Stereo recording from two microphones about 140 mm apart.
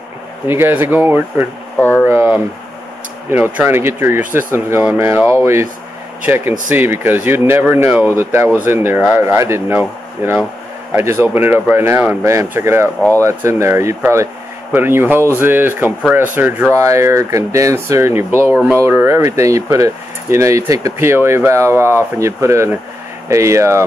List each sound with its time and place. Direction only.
0.5 s speech: 15° right (ahead or behind)
1.8 s speech: 10° left (ahead or behind)
2.0 s a sound: 15° right (ahead or behind)
3.3 s speech: 15° right (ahead or behind)